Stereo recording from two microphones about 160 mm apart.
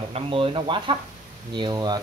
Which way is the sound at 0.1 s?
35° right (ahead or behind).